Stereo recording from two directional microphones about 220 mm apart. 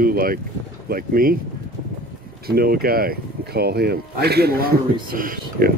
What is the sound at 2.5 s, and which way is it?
Speech, 45° right (ahead or behind).